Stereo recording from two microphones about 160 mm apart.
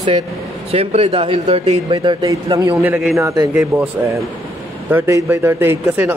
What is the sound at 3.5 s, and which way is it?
Speech, 10° right (ahead or behind).